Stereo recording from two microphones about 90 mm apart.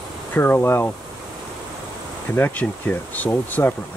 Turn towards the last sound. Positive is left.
turn(degrees=20)  # may be behind; listen again after turning